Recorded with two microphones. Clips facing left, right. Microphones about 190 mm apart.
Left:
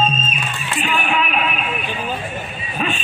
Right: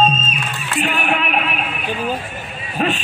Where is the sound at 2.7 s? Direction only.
70° right (ahead or behind).